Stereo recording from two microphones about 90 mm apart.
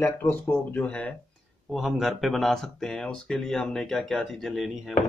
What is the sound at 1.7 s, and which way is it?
Speech, 5° right (ahead or behind).